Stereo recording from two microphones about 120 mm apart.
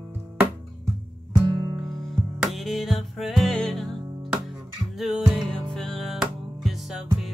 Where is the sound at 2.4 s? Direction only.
Centre (ahead or behind).